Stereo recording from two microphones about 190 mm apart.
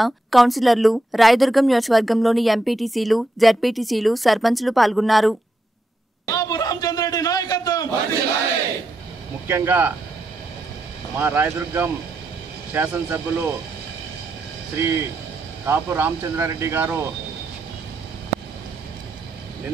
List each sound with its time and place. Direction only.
0.0 s a woman's voice: centre (ahead or behind)
6.2 s a sound: 20° left (ahead or behind)
9.5 s speech: 10° right (ahead or behind)
11.1 s speech: 10° right (ahead or behind)
14.8 s speech: 10° right (ahead or behind)